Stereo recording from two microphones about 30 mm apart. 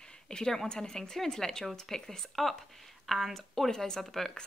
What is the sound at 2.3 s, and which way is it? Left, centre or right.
Speech, centre.